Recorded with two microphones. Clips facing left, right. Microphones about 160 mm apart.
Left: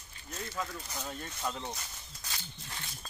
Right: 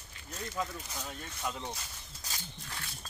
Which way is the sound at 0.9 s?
Centre (ahead or behind).